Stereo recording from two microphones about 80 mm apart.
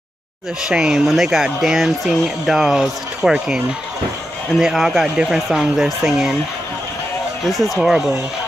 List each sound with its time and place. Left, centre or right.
0.7 s speech: centre
7.4 s speech: centre